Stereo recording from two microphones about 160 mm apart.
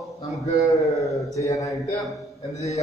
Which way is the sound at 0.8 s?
Centre (ahead or behind).